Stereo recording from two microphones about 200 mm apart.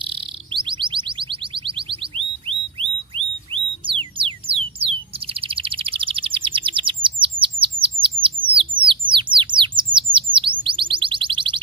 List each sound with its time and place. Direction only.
0.0 s bird: 25° right (ahead or behind)
3.2 s music: 25° right (ahead or behind)
9.9 s chirp: 25° right (ahead or behind)
10.6 s chirp tone: 25° right (ahead or behind)